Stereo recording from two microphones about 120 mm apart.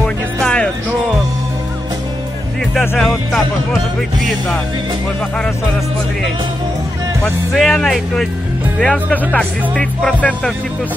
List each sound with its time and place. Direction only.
0.0 s music: 10° left (ahead or behind)
3.0 s speech: centre (ahead or behind)
7.2 s speech: centre (ahead or behind)